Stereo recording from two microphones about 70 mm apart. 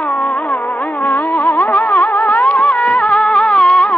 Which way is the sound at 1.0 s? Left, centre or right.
Left.